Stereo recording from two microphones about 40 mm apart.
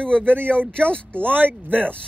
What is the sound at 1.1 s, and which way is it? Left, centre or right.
Speech, right.